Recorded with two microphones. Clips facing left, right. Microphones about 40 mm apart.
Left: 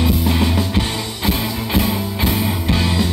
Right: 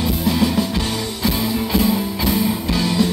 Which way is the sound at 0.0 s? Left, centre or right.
Left.